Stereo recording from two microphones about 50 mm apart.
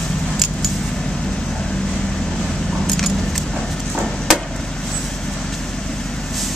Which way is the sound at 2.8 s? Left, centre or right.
Centre.